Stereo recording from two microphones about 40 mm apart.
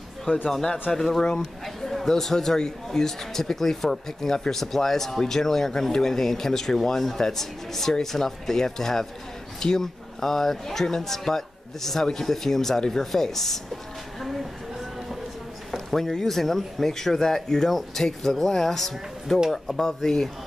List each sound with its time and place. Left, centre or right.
0.5 s speech: centre
15.7 s speech: centre